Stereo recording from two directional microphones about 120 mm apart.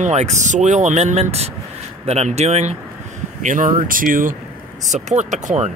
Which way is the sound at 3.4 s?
90° right.